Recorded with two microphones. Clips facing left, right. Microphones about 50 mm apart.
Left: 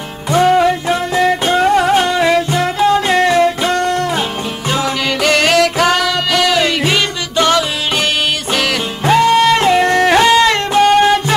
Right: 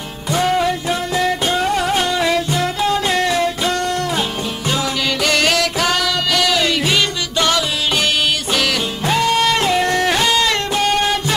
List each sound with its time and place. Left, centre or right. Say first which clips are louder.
0.3 s music: left 6 dB; left